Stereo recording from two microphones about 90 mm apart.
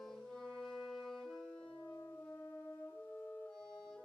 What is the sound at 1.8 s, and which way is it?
French horn, 30° left (ahead or behind).